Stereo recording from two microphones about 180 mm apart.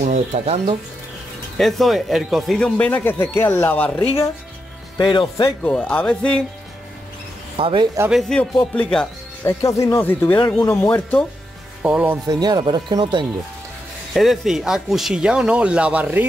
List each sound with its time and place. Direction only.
0.0 s speech: 40° right (ahead or behind)
1.6 s speech: centre (ahead or behind)
4.9 s speech: 25° left (ahead or behind)
5.6 s speech: 5° left (ahead or behind)
7.5 s speech: 30° right (ahead or behind)
8.1 s speech: centre (ahead or behind)
11.8 s speech: 10° right (ahead or behind)
12.3 s speech: 25° right (ahead or behind)
14.1 s speech: centre (ahead or behind)